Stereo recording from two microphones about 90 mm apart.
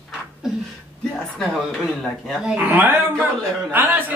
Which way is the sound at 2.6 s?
20° right (ahead or behind).